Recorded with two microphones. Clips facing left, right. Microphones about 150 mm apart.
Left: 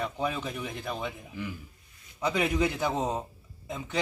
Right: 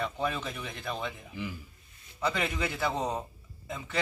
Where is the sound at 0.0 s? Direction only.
10° left (ahead or behind).